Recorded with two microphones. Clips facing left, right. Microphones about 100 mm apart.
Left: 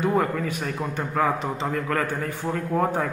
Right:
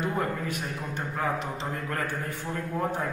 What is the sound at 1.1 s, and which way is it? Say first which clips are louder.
A man's voice: left 6 dB; 80° left.